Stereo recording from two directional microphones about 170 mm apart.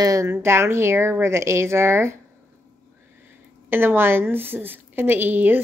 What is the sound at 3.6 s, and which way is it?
Speech, 15° right (ahead or behind).